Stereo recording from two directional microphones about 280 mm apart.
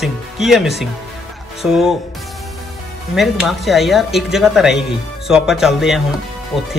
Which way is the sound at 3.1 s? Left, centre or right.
Centre.